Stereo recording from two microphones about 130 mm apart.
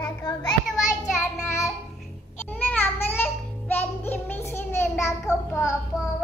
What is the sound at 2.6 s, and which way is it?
Child singing, 15° left (ahead or behind).